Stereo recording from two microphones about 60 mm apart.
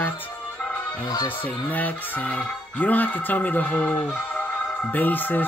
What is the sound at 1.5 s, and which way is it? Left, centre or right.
Speech, left.